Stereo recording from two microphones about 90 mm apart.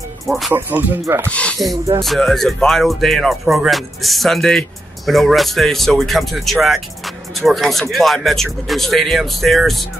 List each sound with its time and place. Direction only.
0.6 s speech: 25° right (ahead or behind)
1.3 s speech: 15° left (ahead or behind)
2.0 s speech: 5° left (ahead or behind)